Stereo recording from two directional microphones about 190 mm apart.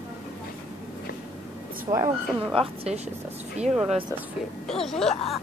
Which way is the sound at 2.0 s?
30° right (ahead or behind).